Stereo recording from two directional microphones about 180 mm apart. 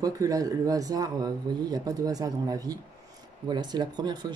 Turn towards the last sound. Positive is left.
turn(degrees=-25)  # may be behind; listen again after turning